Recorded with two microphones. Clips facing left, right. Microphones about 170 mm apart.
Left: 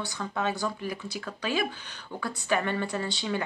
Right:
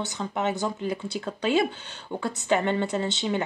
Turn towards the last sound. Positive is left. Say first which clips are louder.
# right 4 dB
turn(degrees=-20)  # may be behind; listen again after turning